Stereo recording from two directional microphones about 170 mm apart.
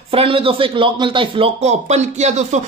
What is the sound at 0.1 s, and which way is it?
Speech, 35° right (ahead or behind).